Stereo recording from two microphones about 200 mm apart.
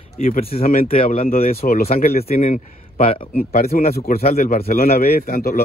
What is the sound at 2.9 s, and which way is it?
Speech, 30° left (ahead or behind).